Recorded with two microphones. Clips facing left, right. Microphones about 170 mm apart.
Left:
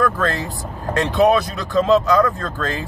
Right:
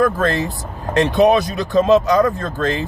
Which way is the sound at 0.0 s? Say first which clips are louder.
Right 3 dB; 20° right (ahead or behind).